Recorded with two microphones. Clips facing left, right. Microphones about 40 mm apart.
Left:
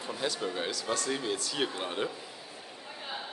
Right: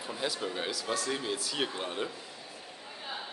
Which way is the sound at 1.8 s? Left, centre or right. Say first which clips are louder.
Left 2 dB; centre.